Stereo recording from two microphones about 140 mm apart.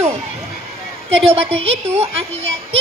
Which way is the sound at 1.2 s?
45° right (ahead or behind).